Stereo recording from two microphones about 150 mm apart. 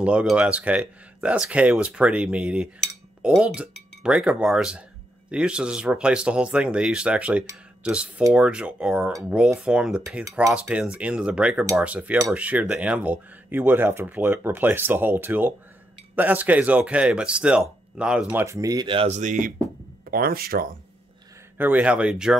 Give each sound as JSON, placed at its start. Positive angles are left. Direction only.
{"t": 0.0, "sound": "speech", "side_deg": -5}
{"t": 18.4, "sound": "speech", "side_deg": -20}
{"t": 19.0, "sound": "speech", "side_deg": -55}
{"t": 20.1, "sound": "speech", "side_deg": -85}
{"t": 21.5, "sound": "speech", "side_deg": -10}